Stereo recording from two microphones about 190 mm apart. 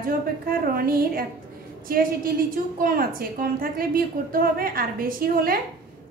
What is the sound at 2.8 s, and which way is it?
A woman's voice, 50° right (ahead or behind).